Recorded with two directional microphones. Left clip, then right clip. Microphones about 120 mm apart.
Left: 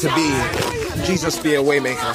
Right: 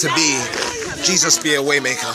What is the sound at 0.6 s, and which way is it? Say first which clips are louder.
Speech: right 1 dB; 20° left (ahead or behind).